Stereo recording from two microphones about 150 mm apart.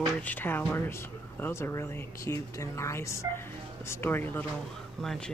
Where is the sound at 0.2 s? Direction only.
10° left (ahead or behind).